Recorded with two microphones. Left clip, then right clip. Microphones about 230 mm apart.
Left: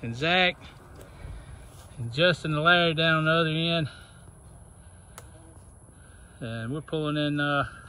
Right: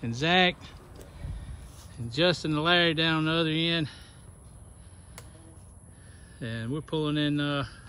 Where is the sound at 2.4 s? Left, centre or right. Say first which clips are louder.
Left 2 dB; centre.